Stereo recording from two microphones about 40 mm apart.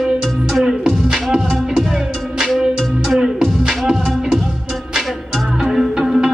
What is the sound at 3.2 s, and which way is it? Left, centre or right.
Music, centre.